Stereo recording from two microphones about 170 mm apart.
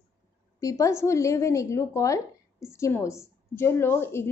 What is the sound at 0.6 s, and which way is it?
A woman's voice, 20° left (ahead or behind).